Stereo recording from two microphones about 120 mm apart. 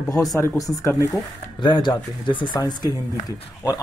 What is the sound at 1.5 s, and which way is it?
Speech, 40° left (ahead or behind).